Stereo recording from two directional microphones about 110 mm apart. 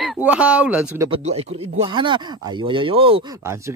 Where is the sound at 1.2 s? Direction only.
75° right (ahead or behind).